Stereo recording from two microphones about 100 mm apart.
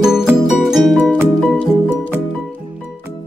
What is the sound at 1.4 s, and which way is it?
Music, 15° left (ahead or behind).